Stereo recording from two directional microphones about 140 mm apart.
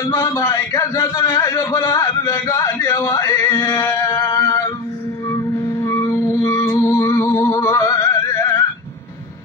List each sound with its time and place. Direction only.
0.1 s a man's voice: 20° left (ahead or behind)
4.3 s a sound: 25° left (ahead or behind)
5.8 s music: 20° left (ahead or behind)